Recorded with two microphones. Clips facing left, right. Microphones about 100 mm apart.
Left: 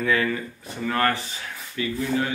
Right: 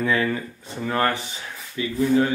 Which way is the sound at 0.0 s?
25° right (ahead or behind).